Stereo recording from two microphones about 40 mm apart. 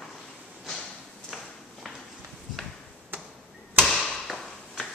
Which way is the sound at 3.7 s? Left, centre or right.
Centre.